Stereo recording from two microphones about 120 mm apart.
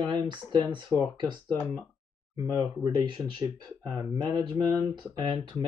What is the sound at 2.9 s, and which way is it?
Speech, 40° right (ahead or behind).